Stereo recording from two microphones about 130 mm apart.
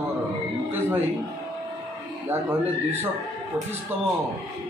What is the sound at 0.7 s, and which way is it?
Speech, 15° right (ahead or behind).